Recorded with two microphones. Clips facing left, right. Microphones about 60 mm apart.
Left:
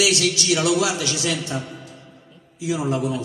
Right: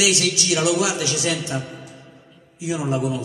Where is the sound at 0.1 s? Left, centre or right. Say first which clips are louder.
Left 1 dB; right.